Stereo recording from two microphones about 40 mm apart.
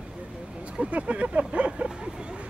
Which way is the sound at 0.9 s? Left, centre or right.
Right.